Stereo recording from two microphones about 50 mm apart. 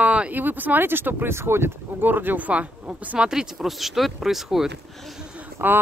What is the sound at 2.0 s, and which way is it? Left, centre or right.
Speech, right.